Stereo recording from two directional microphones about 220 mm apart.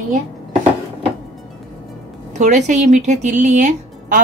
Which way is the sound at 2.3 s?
35° right (ahead or behind).